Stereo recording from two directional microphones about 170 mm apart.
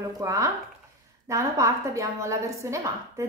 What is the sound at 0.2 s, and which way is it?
A woman's voice, 20° right (ahead or behind).